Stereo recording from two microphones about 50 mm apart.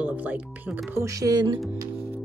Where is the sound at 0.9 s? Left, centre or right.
Right.